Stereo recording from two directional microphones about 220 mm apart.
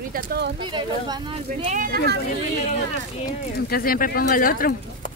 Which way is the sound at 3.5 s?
45° left (ahead or behind).